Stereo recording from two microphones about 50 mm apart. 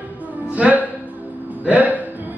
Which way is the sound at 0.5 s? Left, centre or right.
Right.